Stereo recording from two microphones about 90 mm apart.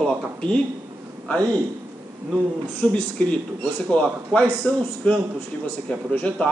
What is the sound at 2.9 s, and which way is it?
A man's voice, 15° left (ahead or behind).